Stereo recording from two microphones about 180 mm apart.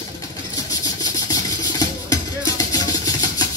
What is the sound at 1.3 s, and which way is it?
Music, 20° left (ahead or behind).